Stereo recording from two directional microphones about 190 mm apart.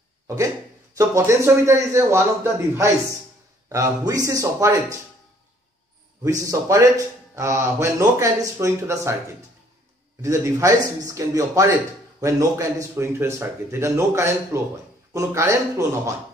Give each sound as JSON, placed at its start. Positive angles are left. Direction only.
{"t": 0.9, "sound": "a man's voice", "side_deg": -15}
{"t": 6.4, "sound": "a man's voice", "side_deg": -15}
{"t": 10.2, "sound": "a man's voice", "side_deg": -15}